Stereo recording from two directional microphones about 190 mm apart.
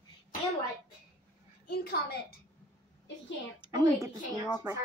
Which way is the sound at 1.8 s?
50° left (ahead or behind).